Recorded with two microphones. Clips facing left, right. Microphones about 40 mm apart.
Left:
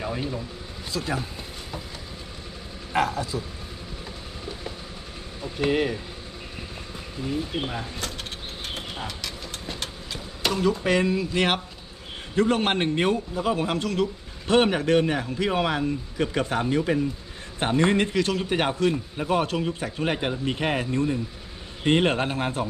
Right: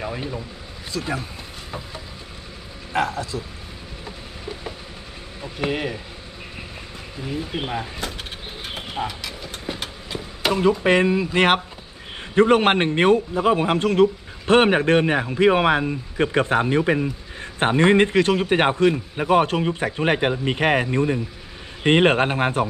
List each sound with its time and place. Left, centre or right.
0.0 s speech: centre
0.9 s speech: centre
3.0 s speech: centre
5.6 s speech: centre
7.2 s speech: right
9.0 s vehicle: centre
10.5 s a man's voice: right